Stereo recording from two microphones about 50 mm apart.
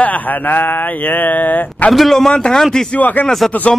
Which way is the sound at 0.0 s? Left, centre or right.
Left.